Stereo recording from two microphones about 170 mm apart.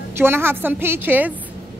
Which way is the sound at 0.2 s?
15° right (ahead or behind).